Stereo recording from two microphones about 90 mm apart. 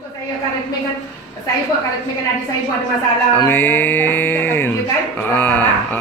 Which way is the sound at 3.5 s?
20° left (ahead or behind).